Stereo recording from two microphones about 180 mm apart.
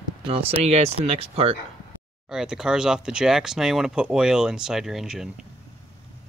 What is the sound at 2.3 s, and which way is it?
Speech, 5° right (ahead or behind).